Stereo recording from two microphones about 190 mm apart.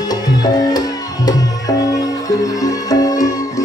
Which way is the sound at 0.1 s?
20° left (ahead or behind).